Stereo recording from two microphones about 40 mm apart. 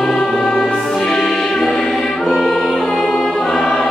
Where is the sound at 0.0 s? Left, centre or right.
Centre.